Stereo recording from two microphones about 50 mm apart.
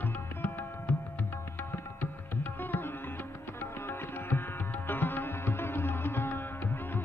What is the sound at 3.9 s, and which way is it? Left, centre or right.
Music, left.